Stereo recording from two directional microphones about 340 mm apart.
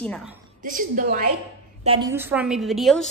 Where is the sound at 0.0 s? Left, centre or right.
Centre.